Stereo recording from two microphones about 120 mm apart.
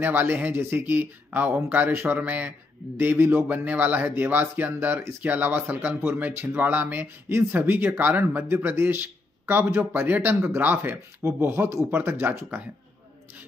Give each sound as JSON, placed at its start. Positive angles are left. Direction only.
{"t": 0.0, "sound": "speech", "side_deg": -15}